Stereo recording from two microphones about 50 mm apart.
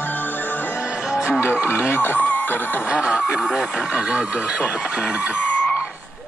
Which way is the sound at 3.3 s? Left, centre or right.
Centre.